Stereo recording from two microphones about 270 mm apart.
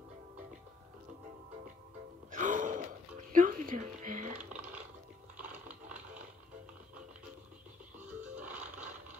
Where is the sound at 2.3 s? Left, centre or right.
Right.